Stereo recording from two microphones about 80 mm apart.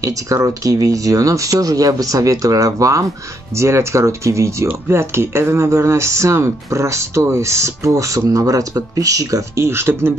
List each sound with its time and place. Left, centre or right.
0.0 s speech: right